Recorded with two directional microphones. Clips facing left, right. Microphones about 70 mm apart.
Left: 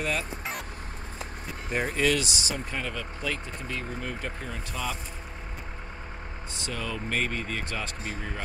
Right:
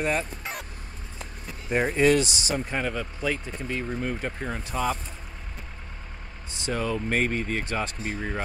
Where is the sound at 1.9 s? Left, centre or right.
Right.